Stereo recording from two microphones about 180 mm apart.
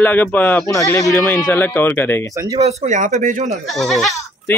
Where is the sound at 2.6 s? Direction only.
35° right (ahead or behind).